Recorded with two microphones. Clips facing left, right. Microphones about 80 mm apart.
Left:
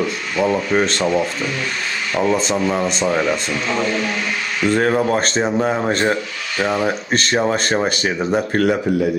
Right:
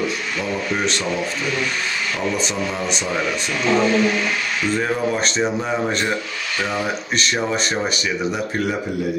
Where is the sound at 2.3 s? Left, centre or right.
Left.